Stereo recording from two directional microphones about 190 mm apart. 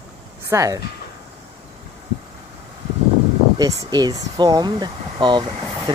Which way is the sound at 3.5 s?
20° right (ahead or behind).